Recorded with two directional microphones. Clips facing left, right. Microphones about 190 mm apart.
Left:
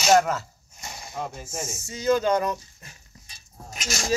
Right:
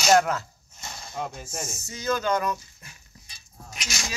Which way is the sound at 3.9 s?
45° left (ahead or behind).